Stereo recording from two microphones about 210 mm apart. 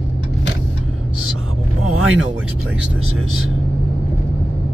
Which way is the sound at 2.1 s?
5° right (ahead or behind).